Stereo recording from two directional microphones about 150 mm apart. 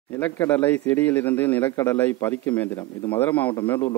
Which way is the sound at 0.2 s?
10° left (ahead or behind).